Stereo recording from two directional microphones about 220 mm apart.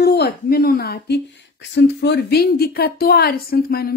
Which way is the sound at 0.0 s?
45° left (ahead or behind).